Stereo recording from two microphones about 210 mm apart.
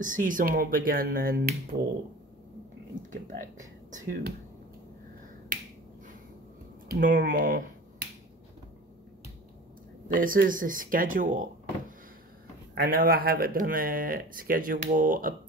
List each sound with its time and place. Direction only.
0.0 s speech: 40° right (ahead or behind)
3.1 s speech: 35° right (ahead or behind)
6.9 s speech: 40° right (ahead or behind)
10.0 s speech: 40° right (ahead or behind)
12.7 s speech: 45° right (ahead or behind)